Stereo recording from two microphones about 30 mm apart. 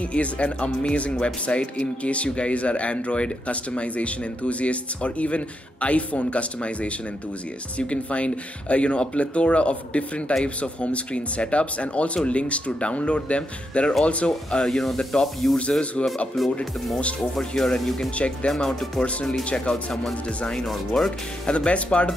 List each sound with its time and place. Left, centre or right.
0.0 s speech: left
14.6 s speech: centre
16.0 s speech: left
16.4 s speech: centre
17.4 s speech: centre
18.1 s speech: left
19.0 s speech: centre
21.5 s speech: left